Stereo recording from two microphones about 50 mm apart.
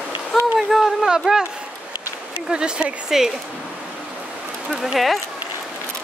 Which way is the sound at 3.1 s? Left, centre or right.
Centre.